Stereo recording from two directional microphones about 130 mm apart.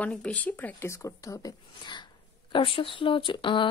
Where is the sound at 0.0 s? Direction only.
10° left (ahead or behind); by 2.0 s 30° left (ahead or behind).